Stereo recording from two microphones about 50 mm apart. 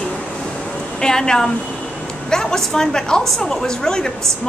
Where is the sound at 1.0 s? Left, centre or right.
Centre.